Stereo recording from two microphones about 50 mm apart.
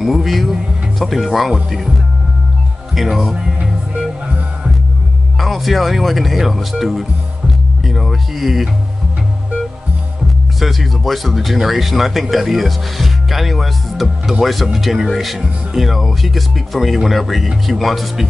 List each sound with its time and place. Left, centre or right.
0.0 s speech: centre
2.9 s speech: centre
3.3 s music: centre
5.4 s speech: centre
10.6 s speech: centre